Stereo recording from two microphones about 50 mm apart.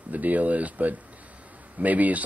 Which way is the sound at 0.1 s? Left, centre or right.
Right.